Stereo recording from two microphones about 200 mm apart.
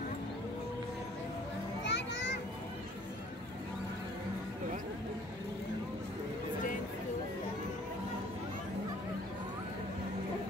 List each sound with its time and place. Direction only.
1.9 s children playing: 60° left (ahead or behind)